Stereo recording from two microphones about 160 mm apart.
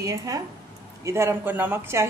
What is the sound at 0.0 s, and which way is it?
Speech, 20° right (ahead or behind).